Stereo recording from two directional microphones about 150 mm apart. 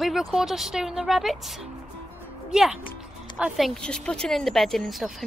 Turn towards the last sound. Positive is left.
turn(degrees=0)  # may be behind; listen again after turning